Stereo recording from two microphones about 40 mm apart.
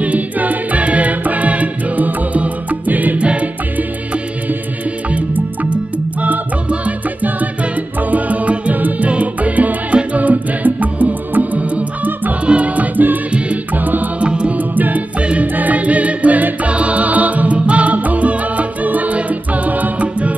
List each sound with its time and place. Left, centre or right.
0.0 s music: right
3.2 s music: right
5.1 s music: right
8.1 s music: right
14.2 s music: right
14.6 s music: right